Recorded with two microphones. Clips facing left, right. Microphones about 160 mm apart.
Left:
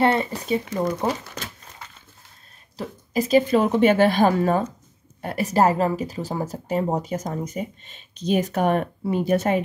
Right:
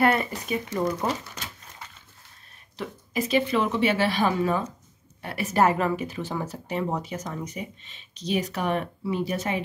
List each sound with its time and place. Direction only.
0.0 s speech: 25° left (ahead or behind)
2.8 s speech: 35° left (ahead or behind)